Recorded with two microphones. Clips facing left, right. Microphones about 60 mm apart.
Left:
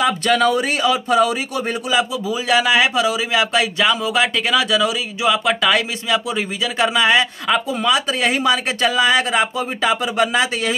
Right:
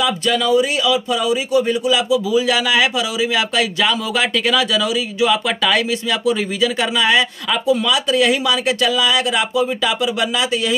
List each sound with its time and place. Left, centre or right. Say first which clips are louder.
0.0 s speech: left 2 dB; left
1.9 s a man's voice: right 3 dB; left